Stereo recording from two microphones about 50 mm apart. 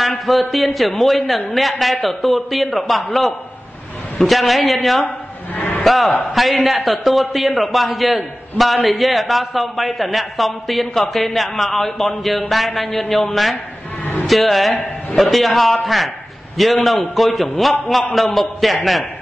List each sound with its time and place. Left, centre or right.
0.0 s a man's voice: centre
5.5 s a man's voice: left
5.9 s a man's voice: centre